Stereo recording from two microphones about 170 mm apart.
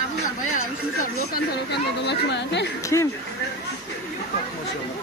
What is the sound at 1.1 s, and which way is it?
Speech, 70° left (ahead or behind).